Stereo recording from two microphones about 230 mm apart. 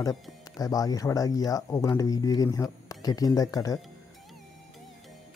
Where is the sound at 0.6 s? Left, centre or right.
Centre.